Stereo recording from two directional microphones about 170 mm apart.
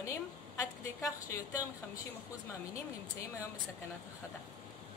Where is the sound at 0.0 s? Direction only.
15° left (ahead or behind).